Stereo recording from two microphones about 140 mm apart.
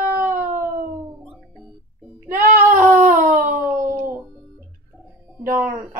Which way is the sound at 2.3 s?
20° right (ahead or behind).